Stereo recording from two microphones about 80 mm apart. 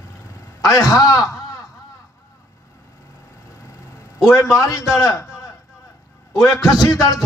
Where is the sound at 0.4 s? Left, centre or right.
Left.